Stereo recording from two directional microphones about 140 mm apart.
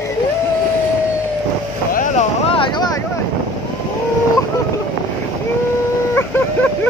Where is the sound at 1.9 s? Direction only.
75° left (ahead or behind).